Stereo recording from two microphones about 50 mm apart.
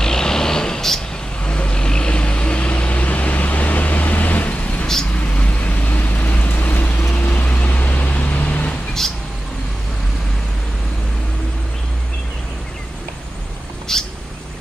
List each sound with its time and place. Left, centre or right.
0.0 s vehicle: centre
1.4 s vehicle: left
13.9 s bird: centre